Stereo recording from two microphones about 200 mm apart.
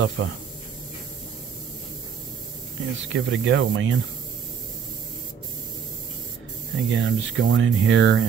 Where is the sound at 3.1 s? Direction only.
65° right (ahead or behind).